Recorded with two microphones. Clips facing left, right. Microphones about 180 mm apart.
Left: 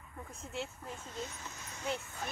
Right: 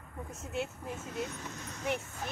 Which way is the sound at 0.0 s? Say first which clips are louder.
Right 4 dB; 45° right (ahead or behind).